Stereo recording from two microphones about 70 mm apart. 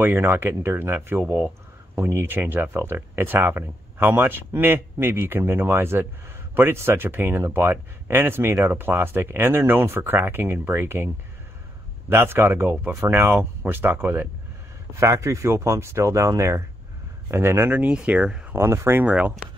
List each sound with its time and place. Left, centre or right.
0.0 s speech: right
12.1 s speech: right
15.0 s speech: right
17.6 s speech: right
18.5 s speech: right
19.0 s speech: centre